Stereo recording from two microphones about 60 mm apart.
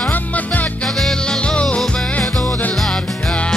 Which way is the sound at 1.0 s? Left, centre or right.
Centre.